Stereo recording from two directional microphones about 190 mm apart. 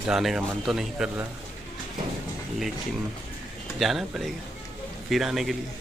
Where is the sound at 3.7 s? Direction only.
Centre (ahead or behind).